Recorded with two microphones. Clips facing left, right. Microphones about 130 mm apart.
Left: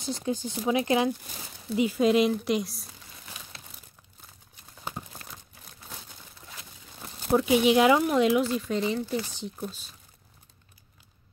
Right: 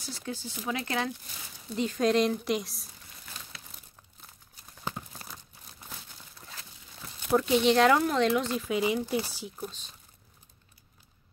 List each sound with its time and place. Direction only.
0.0 s speech: 20° left (ahead or behind)
1.8 s speech: 5° left (ahead or behind)
7.3 s speech: 10° left (ahead or behind); by 9.7 s 5° right (ahead or behind)